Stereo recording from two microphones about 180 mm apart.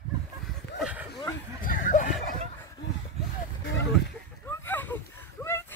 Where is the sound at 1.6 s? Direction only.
45° left (ahead or behind).